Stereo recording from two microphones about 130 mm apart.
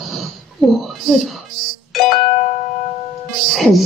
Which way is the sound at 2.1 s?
70° left (ahead or behind).